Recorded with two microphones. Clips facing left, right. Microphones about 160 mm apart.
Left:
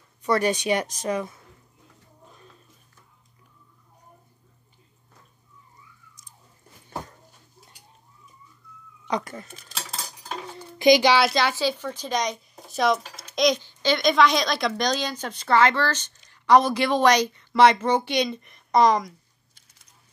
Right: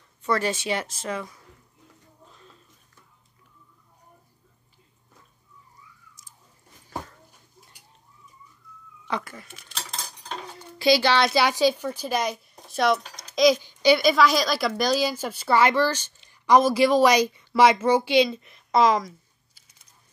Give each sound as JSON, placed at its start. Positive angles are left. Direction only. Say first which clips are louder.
{"t": 0.2, "sound": "speech", "louder": "left 3 dB", "side_deg": 15}
{"t": 9.0, "sound": "speech", "louder": "left 3 dB", "side_deg": 20}
{"t": 9.4, "sound": "speech", "louder": "left 4 dB", "side_deg": 40}
{"t": 9.8, "sound": "cutlery", "louder": "left 1 dB", "side_deg": 5}
{"t": 10.8, "sound": "speech", "louder": "left 3 dB", "side_deg": 15}
{"t": 11.3, "sound": "speech", "louder": "right 3 dB", "side_deg": -15}
{"t": 13.3, "sound": "a sound", "louder": "right 3 dB", "side_deg": 0}
{"t": 13.6, "sound": "a woman's voice", "louder": "right 5 dB", "side_deg": -10}
{"t": 18.7, "sound": "a sound", "louder": "left 1 dB", "side_deg": -5}